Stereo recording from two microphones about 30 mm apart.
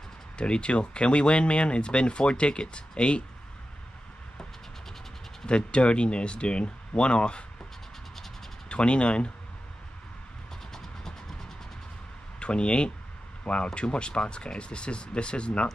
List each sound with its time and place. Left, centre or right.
0.4 s speech: left
5.5 s speech: left
8.6 s speech: left
10.7 s vehicle: centre
12.4 s speech: left